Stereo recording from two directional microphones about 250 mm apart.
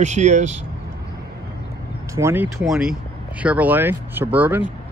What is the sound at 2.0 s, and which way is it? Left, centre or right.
Speech, centre.